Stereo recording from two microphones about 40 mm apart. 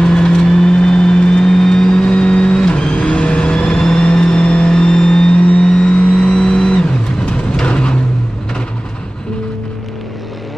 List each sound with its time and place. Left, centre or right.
0.0 s vehicle: left